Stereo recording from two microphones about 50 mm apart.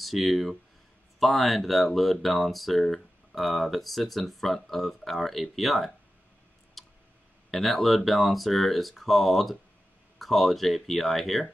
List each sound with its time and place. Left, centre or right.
0.0 s speech: centre
6.8 s clicking: centre
7.5 s speech: centre